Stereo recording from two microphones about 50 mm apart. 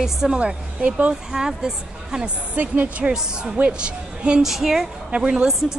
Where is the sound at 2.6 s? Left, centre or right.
Right.